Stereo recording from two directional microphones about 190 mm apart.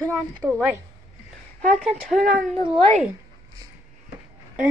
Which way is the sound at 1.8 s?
5° left (ahead or behind).